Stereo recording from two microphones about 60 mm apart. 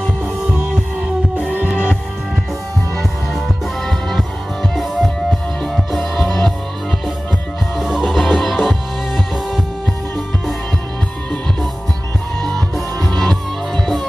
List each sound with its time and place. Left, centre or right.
1.7 s music: left
3.0 s music: centre
7.8 s music: centre
12.4 s music: centre